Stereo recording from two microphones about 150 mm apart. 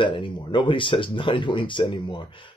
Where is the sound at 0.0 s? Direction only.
30° left (ahead or behind).